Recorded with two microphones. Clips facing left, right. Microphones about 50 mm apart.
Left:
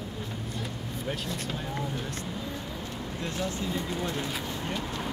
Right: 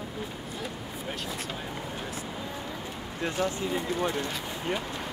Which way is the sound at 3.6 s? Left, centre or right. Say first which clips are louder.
Right 3 dB; centre.